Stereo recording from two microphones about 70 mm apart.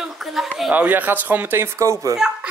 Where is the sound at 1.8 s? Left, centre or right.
Right.